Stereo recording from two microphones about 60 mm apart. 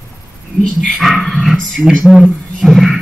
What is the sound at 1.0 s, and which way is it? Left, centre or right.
A woman's voice, centre.